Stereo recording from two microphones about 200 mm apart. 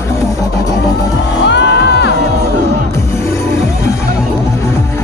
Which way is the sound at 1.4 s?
60° left (ahead or behind).